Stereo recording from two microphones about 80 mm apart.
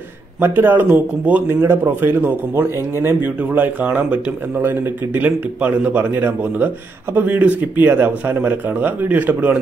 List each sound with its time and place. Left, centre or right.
0.4 s speech: right